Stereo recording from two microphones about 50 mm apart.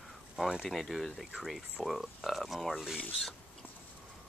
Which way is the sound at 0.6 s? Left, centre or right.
Centre.